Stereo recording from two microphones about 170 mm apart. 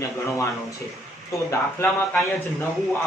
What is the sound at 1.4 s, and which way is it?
Speech, 15° left (ahead or behind).